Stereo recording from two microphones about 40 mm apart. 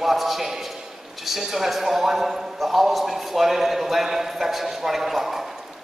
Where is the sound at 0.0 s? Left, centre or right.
Centre.